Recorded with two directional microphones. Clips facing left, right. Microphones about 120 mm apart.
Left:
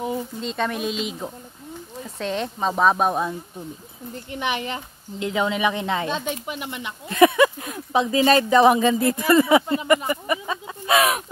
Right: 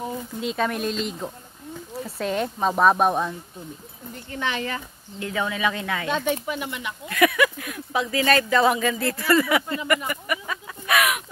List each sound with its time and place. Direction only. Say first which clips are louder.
0.4 s speech: right 5 dB; 5° right (ahead or behind)
4.3 s speech: left 1 dB; 15° left (ahead or behind)